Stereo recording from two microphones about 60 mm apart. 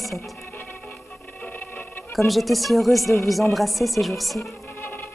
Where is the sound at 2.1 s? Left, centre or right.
Centre.